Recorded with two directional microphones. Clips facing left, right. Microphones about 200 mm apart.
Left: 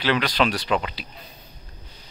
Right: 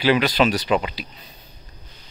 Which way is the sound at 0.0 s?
5° right (ahead or behind).